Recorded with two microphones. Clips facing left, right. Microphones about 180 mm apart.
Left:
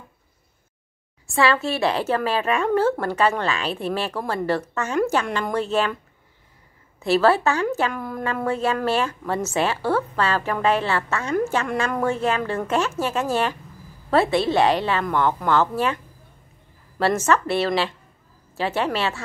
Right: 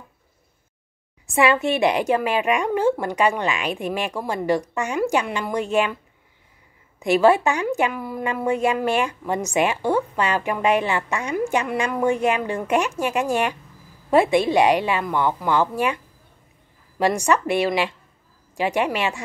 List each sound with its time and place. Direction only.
1.2 s a woman's voice: 20° right (ahead or behind)
7.0 s a woman's voice: 15° right (ahead or behind)
17.0 s a woman's voice: 15° right (ahead or behind)